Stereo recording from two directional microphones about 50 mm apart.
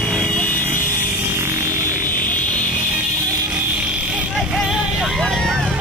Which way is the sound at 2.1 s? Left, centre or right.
Left.